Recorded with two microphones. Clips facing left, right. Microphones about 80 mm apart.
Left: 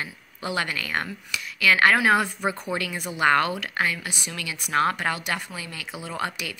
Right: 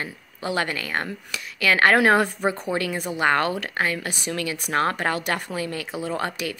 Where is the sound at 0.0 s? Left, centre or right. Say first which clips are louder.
Right 2 dB; right.